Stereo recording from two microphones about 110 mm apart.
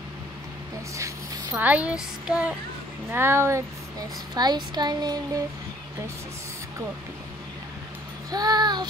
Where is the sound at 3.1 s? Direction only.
20° right (ahead or behind).